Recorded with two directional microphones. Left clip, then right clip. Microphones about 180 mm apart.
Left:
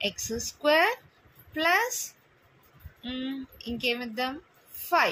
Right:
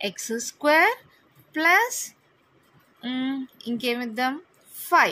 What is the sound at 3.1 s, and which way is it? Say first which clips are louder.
A woman's voice: right 6 dB; 45° right (ahead or behind).